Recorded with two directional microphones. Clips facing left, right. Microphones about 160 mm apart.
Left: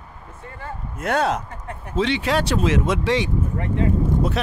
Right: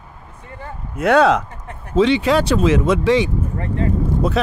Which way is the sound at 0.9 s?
90° right.